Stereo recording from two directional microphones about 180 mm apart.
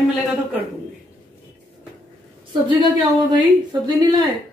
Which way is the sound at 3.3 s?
25° right (ahead or behind).